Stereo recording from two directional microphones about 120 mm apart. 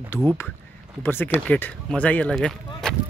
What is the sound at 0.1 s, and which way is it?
Speech, 20° left (ahead or behind).